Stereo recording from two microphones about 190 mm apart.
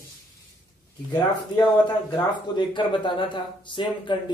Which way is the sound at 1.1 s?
20° left (ahead or behind).